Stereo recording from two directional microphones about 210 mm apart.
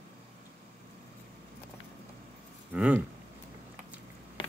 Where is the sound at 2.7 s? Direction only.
5° right (ahead or behind).